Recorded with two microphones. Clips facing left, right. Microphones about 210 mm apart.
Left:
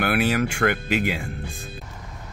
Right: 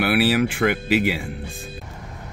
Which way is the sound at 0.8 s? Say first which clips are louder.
Right 4 dB; 50° left (ahead or behind).